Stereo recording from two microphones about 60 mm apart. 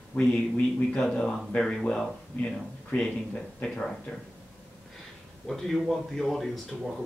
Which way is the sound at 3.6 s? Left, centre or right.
Centre.